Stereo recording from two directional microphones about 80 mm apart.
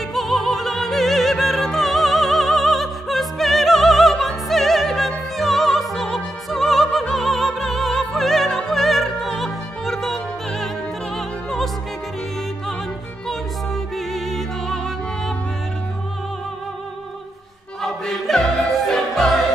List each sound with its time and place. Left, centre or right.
0.1 s opera: centre
13.9 s music: centre
17.8 s music: centre